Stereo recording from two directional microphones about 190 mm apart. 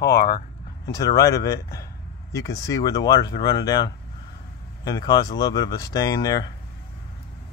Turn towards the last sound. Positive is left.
turn(degrees=20)  # may be behind; listen again after turning